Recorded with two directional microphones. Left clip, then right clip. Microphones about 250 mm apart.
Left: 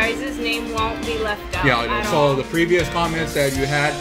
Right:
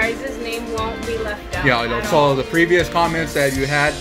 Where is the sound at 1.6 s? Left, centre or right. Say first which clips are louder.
Right 1 dB; centre.